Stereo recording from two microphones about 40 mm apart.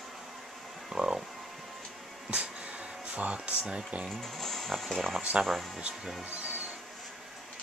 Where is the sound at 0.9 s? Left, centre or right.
Centre.